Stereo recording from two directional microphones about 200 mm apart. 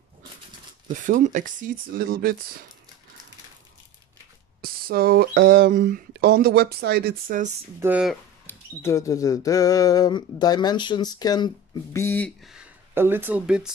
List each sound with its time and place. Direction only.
1.0 s speech: 40° right (ahead or behind)
4.6 s speech: 50° right (ahead or behind)
7.8 s speech: 5° right (ahead or behind)
8.5 s a sound: 15° left (ahead or behind)
12.4 s speech: 10° right (ahead or behind)